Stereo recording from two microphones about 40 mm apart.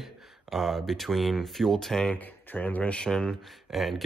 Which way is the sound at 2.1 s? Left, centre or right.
Left.